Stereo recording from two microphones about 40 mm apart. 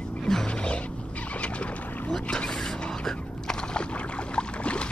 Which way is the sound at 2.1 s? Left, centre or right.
Centre.